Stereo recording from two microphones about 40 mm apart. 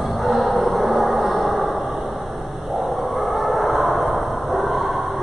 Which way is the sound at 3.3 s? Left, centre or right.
Centre.